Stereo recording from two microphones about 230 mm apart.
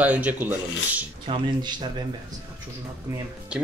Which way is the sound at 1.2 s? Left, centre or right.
Centre.